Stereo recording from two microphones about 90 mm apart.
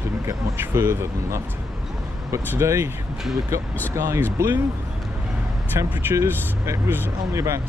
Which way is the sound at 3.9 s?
35° right (ahead or behind).